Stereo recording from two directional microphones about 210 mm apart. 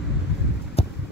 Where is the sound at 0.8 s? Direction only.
30° left (ahead or behind).